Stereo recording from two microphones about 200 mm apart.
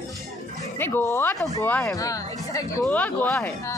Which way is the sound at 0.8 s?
10° left (ahead or behind).